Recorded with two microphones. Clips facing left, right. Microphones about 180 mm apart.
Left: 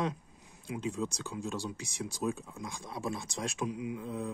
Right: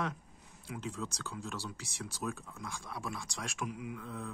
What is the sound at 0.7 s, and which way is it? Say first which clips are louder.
Speech: left 6 dB; 15° left (ahead or behind).